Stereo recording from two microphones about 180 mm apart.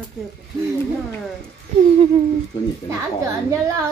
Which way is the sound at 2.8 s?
15° right (ahead or behind).